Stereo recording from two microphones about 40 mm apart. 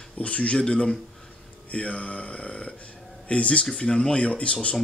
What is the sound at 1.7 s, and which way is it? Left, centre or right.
Speech, left.